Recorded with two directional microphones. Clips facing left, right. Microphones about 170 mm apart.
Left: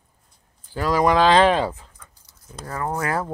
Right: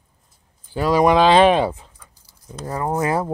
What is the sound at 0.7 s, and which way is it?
Speech, 20° right (ahead or behind).